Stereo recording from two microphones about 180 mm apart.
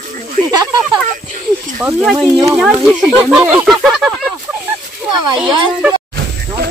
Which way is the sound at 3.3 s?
10° right (ahead or behind).